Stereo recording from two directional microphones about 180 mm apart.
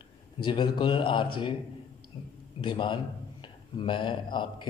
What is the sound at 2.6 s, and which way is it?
Speech, 25° left (ahead or behind).